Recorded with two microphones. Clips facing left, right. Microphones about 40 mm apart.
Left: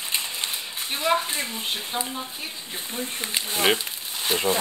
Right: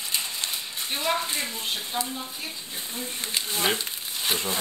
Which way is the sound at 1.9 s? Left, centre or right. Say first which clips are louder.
Even; left.